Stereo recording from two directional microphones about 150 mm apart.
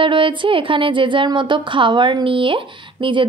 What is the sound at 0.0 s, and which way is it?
A woman's voice, 35° right (ahead or behind).